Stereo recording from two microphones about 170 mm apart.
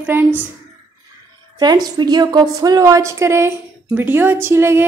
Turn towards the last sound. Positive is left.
turn(degrees=-15)  # may be behind; listen again after turning